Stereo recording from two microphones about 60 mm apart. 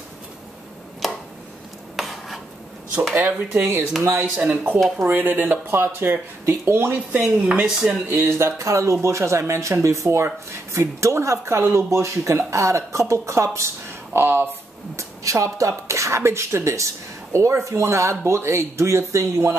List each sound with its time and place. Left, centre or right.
1.0 s a sound: centre
3.3 s dishes: right
4.0 s speech: right
5.0 s speech: right
7.2 s dishes: right
8.1 s speech: right
14.1 s speech: right
15.0 s speech: right